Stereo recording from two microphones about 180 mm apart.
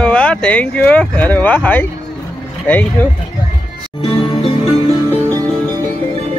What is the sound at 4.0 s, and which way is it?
Music, 30° left (ahead or behind).